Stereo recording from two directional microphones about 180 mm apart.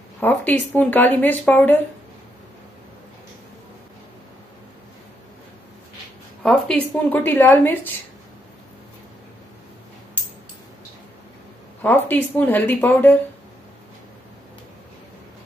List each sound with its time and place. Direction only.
0.2 s speech: 10° left (ahead or behind)
6.4 s speech: 5° left (ahead or behind)
11.8 s speech: 10° left (ahead or behind)